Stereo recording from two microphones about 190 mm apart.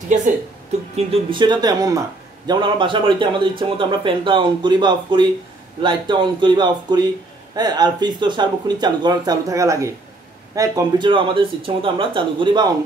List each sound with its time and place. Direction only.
0.9 s speech: 30° right (ahead or behind)